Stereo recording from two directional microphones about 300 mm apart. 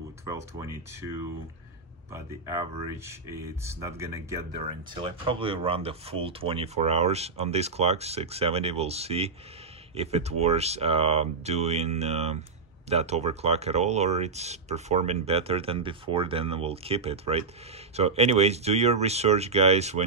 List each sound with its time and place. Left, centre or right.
0.6 s speech: centre